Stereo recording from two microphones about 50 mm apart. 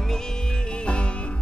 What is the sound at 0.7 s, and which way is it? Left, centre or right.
Music, left.